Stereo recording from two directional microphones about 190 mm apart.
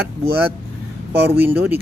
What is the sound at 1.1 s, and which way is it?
Speech, 10° right (ahead or behind).